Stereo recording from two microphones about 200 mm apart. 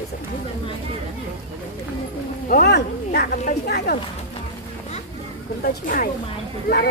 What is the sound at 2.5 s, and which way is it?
Speech, 50° left (ahead or behind).